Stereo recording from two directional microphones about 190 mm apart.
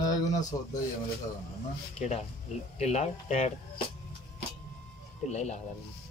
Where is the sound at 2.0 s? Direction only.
35° left (ahead or behind).